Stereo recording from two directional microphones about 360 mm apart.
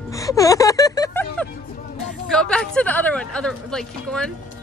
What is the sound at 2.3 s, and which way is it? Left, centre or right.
Speech, centre.